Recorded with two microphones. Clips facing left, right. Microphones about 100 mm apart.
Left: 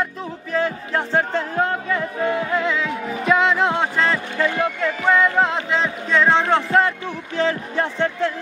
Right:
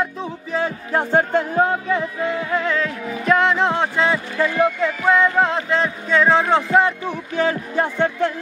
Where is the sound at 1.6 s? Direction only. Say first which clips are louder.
Right 1 dB; 10° right (ahead or behind).